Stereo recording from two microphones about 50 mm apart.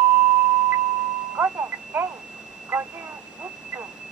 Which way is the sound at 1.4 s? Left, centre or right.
Right.